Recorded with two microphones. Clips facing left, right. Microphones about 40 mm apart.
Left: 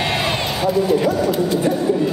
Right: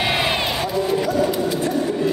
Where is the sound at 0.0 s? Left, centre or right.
Centre.